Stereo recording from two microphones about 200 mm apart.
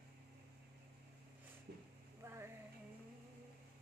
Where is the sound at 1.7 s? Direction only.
55° right (ahead or behind).